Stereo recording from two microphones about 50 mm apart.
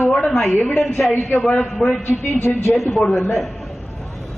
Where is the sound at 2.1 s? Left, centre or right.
Centre.